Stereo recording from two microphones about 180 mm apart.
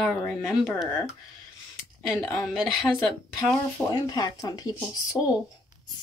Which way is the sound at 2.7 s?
Centre (ahead or behind).